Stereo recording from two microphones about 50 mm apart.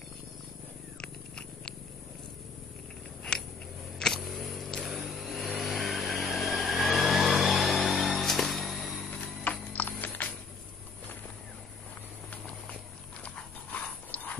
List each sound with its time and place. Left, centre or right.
1.0 s cat: centre
3.3 s a sound: centre
4.0 s vehicle: centre
8.2 s music: centre
9.1 s jingle bell: left
9.7 s music: left
14.1 s a sound: left